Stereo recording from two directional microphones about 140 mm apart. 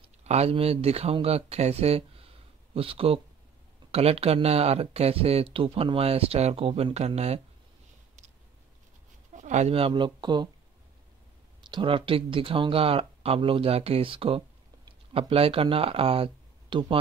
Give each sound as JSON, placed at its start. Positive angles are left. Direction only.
{"t": 0.0, "sound": "speech", "side_deg": -50}
{"t": 9.3, "sound": "speech", "side_deg": -55}
{"t": 11.6, "sound": "speech", "side_deg": -35}